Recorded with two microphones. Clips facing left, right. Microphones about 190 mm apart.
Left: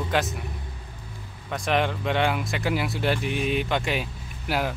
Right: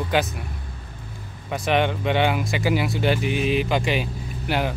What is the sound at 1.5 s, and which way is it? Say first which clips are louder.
Speech: right 3 dB; 5° right (ahead or behind).